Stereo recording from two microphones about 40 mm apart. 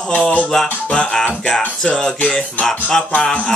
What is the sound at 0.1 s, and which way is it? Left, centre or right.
Speech, left.